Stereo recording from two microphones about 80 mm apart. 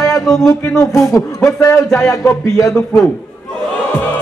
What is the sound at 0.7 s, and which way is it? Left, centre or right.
Speech, left.